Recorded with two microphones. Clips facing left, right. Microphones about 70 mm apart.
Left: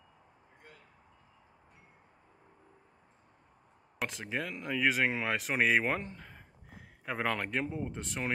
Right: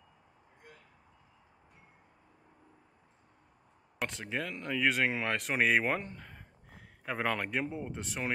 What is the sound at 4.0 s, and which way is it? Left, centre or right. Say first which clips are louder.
Speech: even; centre.